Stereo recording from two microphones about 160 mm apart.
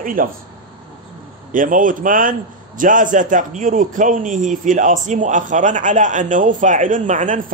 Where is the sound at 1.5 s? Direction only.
55° right (ahead or behind).